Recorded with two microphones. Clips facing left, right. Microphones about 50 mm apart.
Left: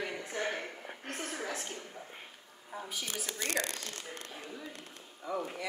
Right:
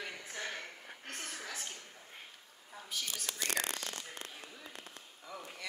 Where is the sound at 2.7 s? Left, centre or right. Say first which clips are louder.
Left 8 dB; centre.